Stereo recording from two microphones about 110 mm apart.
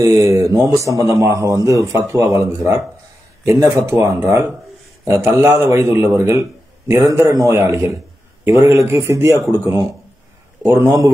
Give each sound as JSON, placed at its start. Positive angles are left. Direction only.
{"t": 0.0, "sound": "a man's voice", "side_deg": -25}
{"t": 10.6, "sound": "speech", "side_deg": -20}